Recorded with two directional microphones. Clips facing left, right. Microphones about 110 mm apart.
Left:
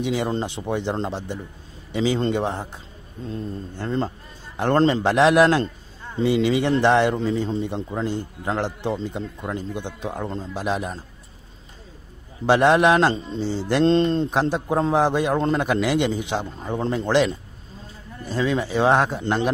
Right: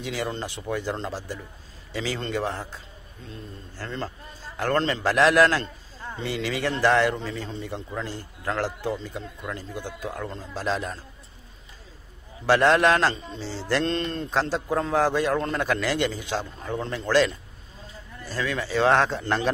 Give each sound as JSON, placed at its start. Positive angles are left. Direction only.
{"t": 0.0, "sound": "a man's voice", "side_deg": 20}
{"t": 10.5, "sound": "a man's voice", "side_deg": 15}
{"t": 12.4, "sound": "a man's voice", "side_deg": 20}
{"t": 14.3, "sound": "a man's voice", "side_deg": 20}